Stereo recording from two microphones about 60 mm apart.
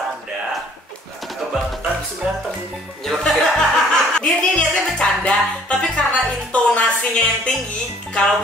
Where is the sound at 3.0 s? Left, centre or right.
Centre.